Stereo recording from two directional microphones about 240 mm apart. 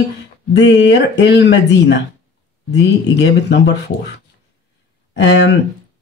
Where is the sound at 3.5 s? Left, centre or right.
Left.